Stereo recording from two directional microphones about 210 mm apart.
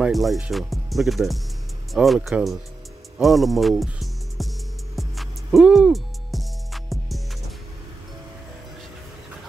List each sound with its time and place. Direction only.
0.0 s speech: centre (ahead or behind)
4.9 s music: centre (ahead or behind)